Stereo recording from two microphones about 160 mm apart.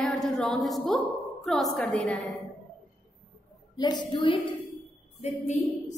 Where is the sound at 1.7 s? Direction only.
5° left (ahead or behind).